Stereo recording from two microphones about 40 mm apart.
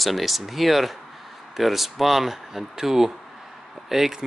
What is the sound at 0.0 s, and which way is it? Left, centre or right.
Speech, centre.